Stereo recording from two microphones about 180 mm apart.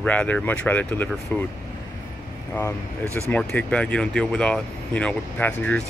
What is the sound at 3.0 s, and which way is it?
Speech, 15° right (ahead or behind).